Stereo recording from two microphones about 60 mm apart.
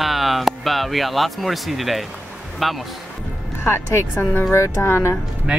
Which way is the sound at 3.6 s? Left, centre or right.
Left.